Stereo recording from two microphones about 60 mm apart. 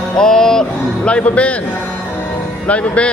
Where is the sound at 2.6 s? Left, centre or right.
Left.